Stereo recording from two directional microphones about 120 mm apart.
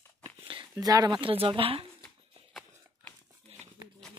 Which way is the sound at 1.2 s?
50° right (ahead or behind).